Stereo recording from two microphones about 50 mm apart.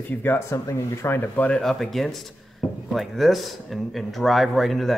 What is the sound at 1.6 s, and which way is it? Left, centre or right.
A man's voice, centre.